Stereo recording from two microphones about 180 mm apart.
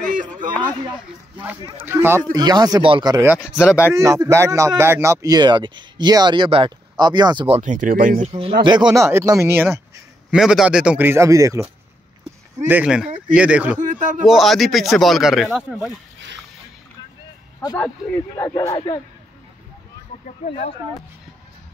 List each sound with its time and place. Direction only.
0.0 s a sound: 45° right (ahead or behind)
1.4 s speech: 10° right (ahead or behind)
3.4 s speech: 5° right (ahead or behind)
3.9 s speech: 15° right (ahead or behind); by 8.3 s 50° right (ahead or behind)
8.3 s speech: 30° right (ahead or behind); by 9.8 s 15° right (ahead or behind)
10.3 s speech: 5° right (ahead or behind)
12.6 s speech: 5° right (ahead or behind)
13.7 s speech: 45° right (ahead or behind)
14.2 s speech: centre (ahead or behind)
18.4 s speech: 20° left (ahead or behind)
18.7 s speech: 30° left (ahead or behind)